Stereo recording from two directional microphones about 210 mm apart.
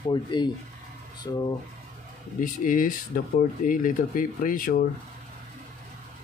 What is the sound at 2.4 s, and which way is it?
Speech, 40° left (ahead or behind).